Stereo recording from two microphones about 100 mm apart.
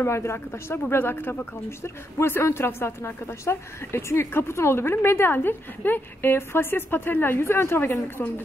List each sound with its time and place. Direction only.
0.0 s a woman's voice: 25° left (ahead or behind)